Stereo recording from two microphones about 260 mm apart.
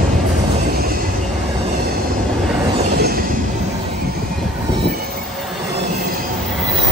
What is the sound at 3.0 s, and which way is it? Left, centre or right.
Train, right.